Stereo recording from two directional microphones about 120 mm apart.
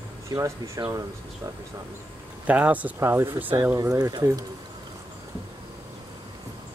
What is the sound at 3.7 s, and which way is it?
Speech, 30° right (ahead or behind).